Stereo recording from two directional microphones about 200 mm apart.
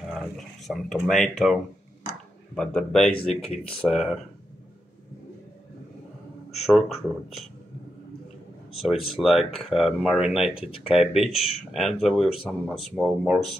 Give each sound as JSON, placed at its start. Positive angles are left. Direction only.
{"t": 0.2, "sound": "speech", "side_deg": 0}
{"t": 6.6, "sound": "speech", "side_deg": 0}
{"t": 9.1, "sound": "speech", "side_deg": 0}